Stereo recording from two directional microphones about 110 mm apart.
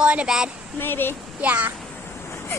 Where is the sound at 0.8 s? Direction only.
20° left (ahead or behind).